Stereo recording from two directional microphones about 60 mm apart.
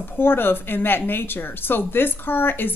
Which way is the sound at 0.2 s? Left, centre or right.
Left.